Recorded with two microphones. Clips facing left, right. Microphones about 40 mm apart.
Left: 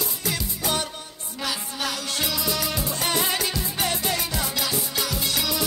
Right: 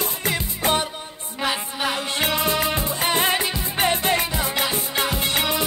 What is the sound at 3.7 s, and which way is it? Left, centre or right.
Music, right.